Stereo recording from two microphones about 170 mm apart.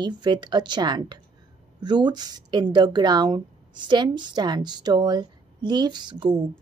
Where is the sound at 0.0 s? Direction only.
25° right (ahead or behind).